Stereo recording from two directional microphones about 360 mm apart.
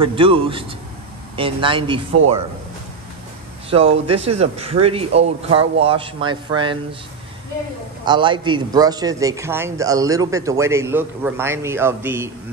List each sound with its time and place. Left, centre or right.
0.0 s a man's voice: centre
3.7 s a man's voice: centre
8.0 s a man's voice: centre